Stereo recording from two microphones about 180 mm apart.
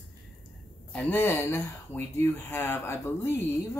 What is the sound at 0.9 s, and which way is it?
Speech, 10° left (ahead or behind).